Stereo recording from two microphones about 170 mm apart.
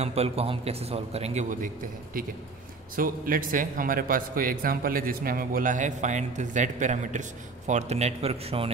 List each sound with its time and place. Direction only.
0.0 s a man's voice: 35° right (ahead or behind)
3.0 s speech: 55° right (ahead or behind); by 8.6 s 35° right (ahead or behind)